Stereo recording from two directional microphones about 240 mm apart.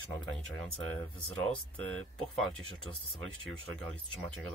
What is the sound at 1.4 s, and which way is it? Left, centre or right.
Speech, centre.